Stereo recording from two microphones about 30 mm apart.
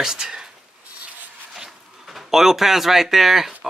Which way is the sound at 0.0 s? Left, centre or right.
Centre.